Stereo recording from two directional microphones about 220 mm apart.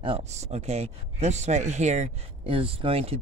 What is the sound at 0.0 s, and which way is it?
A man's voice, 25° right (ahead or behind).